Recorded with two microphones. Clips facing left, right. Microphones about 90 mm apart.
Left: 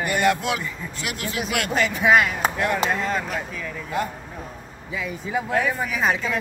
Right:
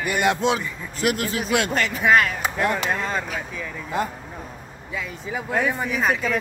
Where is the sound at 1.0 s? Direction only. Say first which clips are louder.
Right 7 dB; 45° right (ahead or behind).